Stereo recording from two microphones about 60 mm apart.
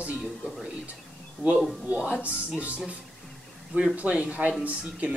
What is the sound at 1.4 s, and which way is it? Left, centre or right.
Speech, centre.